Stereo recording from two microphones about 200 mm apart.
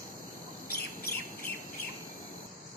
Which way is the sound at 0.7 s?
50° left (ahead or behind).